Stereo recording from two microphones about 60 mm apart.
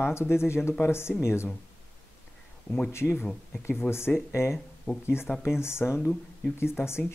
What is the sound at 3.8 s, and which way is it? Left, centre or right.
Speech, left.